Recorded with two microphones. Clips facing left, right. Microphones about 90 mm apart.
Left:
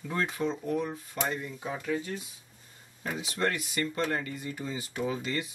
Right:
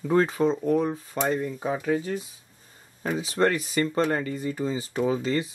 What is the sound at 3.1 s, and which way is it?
Speech, 35° right (ahead or behind).